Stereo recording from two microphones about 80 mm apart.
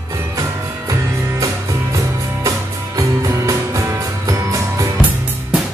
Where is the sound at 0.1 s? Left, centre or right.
Right.